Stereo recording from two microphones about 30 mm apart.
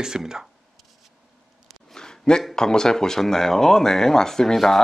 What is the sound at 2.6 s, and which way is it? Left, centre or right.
Speech, left.